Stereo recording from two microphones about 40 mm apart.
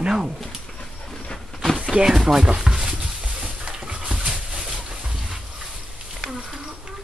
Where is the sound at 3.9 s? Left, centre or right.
Right.